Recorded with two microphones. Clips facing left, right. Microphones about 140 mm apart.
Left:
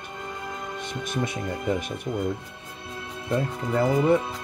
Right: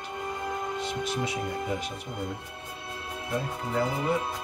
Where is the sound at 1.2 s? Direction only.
55° left (ahead or behind).